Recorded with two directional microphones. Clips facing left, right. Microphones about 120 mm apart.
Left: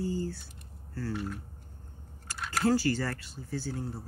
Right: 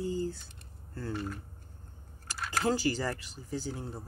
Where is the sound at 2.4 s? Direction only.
Centre (ahead or behind).